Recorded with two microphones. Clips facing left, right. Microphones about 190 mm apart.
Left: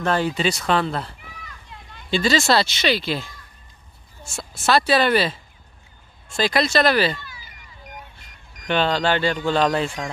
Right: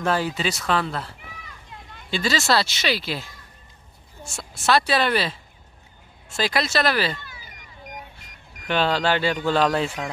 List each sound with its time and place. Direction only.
0.0 s speech: 5° right (ahead or behind)
0.7 s speech: 25° left (ahead or behind)
2.1 s speech: 5° right (ahead or behind)
8.6 s speech: 5° right (ahead or behind)